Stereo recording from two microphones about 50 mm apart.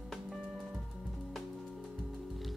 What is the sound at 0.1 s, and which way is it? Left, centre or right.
Music, centre.